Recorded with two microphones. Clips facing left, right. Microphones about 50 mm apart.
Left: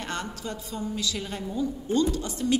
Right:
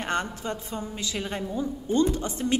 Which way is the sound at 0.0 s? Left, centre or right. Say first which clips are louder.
Right 4 dB; right.